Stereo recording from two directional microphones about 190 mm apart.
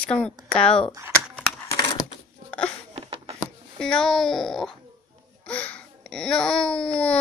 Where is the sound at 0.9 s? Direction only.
10° right (ahead or behind).